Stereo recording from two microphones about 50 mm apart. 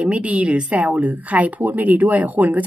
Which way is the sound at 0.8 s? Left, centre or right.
Right.